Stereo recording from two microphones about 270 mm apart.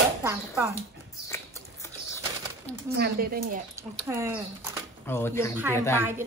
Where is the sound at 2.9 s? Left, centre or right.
Right.